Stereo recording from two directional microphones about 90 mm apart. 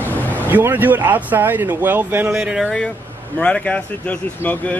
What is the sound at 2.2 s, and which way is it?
Speech, 10° right (ahead or behind).